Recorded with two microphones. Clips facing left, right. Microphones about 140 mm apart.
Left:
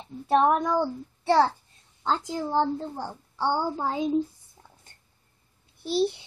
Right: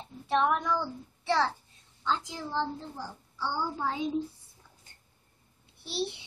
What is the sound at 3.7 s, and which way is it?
Speech, 40° left (ahead or behind).